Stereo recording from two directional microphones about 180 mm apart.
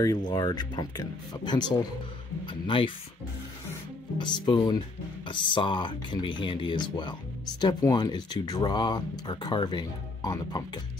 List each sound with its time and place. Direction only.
0.3 s speech: 25° left (ahead or behind)
4.2 s speech: 25° left (ahead or behind)